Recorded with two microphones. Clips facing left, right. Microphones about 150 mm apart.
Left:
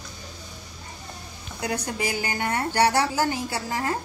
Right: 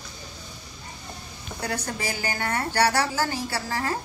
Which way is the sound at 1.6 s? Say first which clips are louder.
Left 2 dB; 20° left (ahead or behind).